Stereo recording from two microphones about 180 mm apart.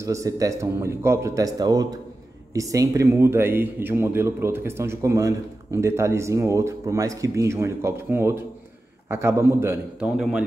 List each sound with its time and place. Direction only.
0.0 s speech: 20° right (ahead or behind)